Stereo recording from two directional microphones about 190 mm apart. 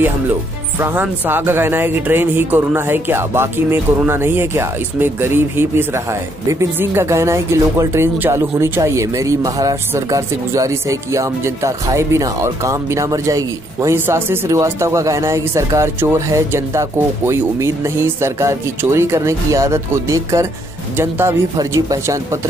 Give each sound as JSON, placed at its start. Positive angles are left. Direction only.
{"t": 0.7, "sound": "speech", "side_deg": -10}